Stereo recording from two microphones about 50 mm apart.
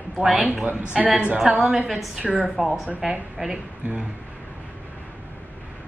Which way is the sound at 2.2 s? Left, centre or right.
Right.